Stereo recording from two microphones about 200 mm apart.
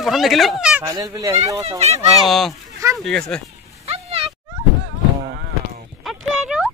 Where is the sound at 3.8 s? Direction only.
30° right (ahead or behind).